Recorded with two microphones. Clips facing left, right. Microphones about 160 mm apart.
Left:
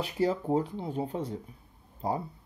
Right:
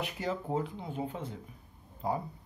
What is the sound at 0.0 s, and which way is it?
Speech, 35° left (ahead or behind).